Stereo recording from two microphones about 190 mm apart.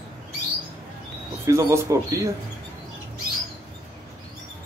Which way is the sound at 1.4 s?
15° right (ahead or behind).